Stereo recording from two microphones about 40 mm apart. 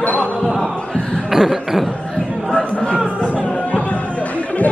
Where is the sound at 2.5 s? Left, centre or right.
Left.